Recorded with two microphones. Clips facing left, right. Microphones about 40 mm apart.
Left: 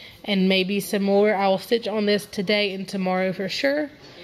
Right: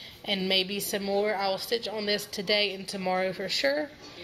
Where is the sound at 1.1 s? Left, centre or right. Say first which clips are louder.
Left 9 dB; left.